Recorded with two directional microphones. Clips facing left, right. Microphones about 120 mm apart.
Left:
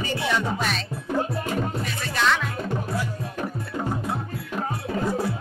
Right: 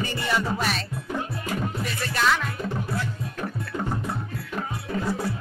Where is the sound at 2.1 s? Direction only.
5° right (ahead or behind).